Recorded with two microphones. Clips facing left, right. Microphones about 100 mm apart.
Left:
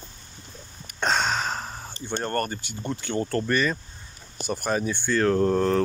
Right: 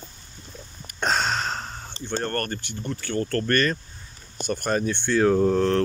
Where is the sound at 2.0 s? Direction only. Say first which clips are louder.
Even; 15° left (ahead or behind).